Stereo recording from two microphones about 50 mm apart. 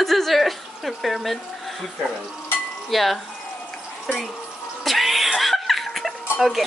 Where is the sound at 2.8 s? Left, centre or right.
Centre.